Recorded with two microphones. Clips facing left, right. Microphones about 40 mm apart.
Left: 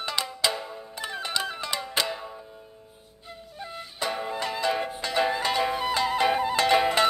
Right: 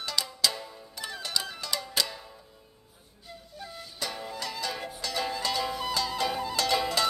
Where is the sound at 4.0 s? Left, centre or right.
Left.